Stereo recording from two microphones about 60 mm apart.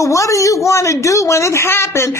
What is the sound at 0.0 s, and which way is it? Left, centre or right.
A man's voice, left.